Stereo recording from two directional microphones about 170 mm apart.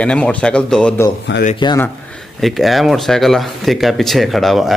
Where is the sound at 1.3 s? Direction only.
90° left.